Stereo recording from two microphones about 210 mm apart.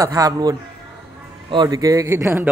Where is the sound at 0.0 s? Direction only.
15° right (ahead or behind).